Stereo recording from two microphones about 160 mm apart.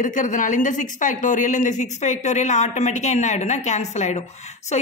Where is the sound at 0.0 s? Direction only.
55° left (ahead or behind).